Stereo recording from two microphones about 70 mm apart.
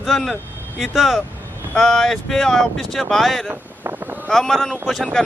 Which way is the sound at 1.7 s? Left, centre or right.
Centre.